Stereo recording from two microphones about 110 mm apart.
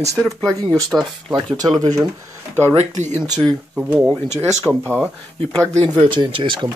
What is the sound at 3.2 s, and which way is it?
Speech, 45° right (ahead or behind).